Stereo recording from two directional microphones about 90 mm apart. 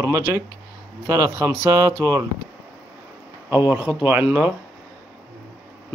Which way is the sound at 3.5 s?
25° right (ahead or behind).